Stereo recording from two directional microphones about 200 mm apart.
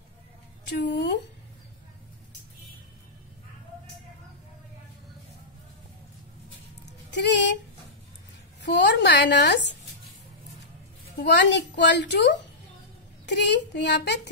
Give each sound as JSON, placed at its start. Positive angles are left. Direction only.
{"t": 0.7, "sound": "a woman's voice", "side_deg": 60}
{"t": 7.1, "sound": "music", "side_deg": 60}
{"t": 8.6, "sound": "a woman's voice", "side_deg": 60}
{"t": 11.1, "sound": "a woman's voice", "side_deg": 60}